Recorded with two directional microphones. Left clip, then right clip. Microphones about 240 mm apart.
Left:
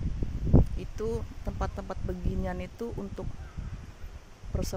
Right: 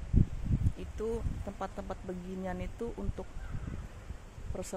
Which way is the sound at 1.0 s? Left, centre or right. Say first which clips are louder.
Left 2 dB; left.